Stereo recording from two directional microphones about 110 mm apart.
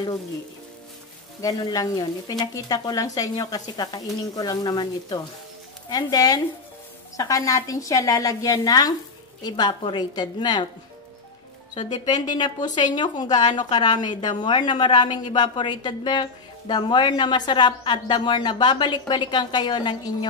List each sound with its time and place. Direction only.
1.4 s speech: 35° left (ahead or behind)
11.7 s a woman's voice: 45° left (ahead or behind)